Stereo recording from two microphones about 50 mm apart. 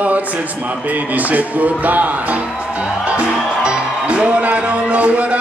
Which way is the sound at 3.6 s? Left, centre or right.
Right.